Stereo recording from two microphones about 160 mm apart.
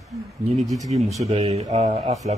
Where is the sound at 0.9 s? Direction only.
45° right (ahead or behind).